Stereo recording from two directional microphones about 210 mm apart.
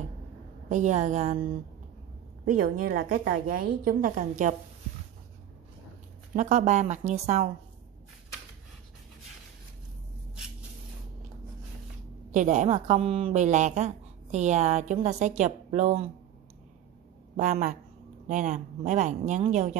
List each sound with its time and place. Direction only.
0.7 s a woman's voice: 35° right (ahead or behind)
2.4 s a woman's voice: 40° right (ahead or behind)
6.3 s a woman's voice: 35° right (ahead or behind)
12.3 s a woman's voice: 35° right (ahead or behind)
17.4 s a woman's voice: 35° right (ahead or behind)